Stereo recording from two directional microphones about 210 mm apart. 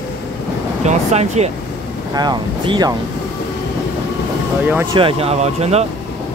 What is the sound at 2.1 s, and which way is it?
Speech, 20° right (ahead or behind).